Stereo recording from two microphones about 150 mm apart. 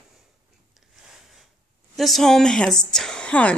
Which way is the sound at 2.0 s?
Centre (ahead or behind).